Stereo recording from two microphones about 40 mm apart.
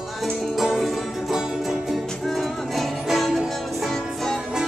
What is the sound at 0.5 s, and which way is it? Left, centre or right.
Music, centre.